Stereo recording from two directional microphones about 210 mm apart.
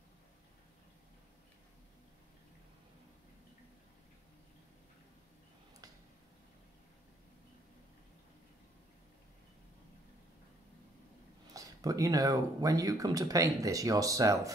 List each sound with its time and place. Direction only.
11.5 s speech: 15° right (ahead or behind)